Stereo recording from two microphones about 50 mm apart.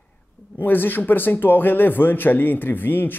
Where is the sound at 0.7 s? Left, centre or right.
Left.